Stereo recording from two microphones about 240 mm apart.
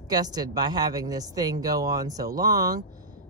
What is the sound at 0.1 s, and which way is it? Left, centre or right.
Speech, centre.